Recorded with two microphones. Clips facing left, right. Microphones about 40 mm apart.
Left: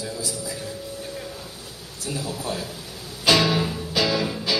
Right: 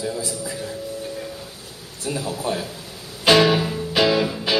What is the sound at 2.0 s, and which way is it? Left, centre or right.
Speech, right.